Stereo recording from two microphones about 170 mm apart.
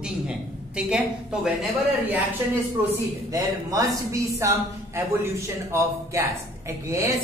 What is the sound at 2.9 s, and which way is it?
A woman's voice, 20° right (ahead or behind).